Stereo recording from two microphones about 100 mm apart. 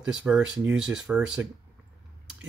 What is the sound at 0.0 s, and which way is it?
Speech, 10° right (ahead or behind).